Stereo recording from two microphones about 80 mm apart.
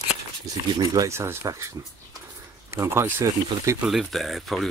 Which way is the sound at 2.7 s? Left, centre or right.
Right.